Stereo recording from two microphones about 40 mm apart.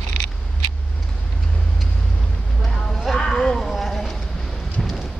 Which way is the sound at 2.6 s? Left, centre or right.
Centre.